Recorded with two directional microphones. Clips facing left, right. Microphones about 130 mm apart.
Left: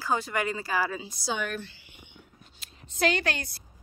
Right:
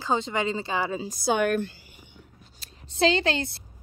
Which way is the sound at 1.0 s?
50° right (ahead or behind).